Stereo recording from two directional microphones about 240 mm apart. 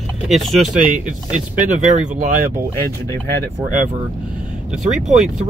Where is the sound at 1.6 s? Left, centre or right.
Right.